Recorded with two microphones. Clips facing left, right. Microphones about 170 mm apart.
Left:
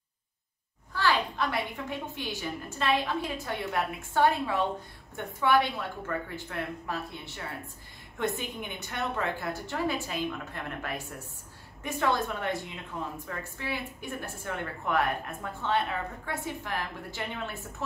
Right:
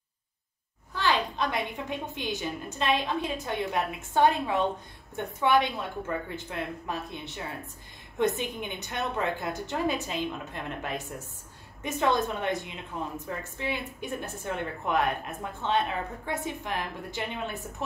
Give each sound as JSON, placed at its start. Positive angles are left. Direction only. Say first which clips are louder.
{"t": 0.9, "sound": "a woman's voice", "louder": "even", "side_deg": -20}